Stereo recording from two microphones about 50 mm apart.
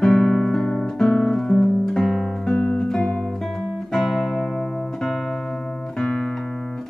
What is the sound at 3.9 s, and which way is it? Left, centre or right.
Guitar, centre.